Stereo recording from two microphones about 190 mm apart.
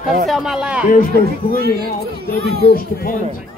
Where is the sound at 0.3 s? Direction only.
Centre (ahead or behind).